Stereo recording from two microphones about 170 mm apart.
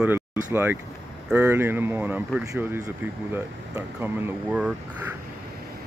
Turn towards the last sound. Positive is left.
turn(degrees=-10)  # may be behind; listen again after turning